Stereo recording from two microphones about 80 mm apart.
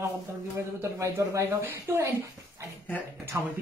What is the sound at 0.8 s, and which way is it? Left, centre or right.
Speech, right.